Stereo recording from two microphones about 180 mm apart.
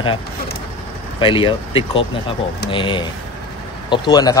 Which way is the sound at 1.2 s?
30° left (ahead or behind).